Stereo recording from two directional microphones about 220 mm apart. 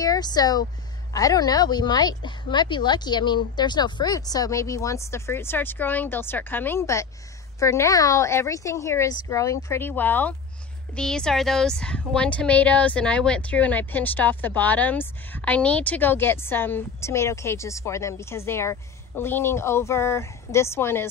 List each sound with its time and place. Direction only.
0.0 s speech: 15° left (ahead or behind)